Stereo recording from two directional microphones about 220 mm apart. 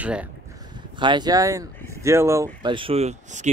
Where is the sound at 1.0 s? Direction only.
20° right (ahead or behind).